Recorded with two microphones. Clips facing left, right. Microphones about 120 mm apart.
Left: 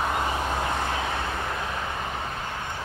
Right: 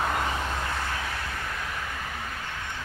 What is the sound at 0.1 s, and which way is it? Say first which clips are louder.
Vehicle: left 2 dB; 20° left (ahead or behind).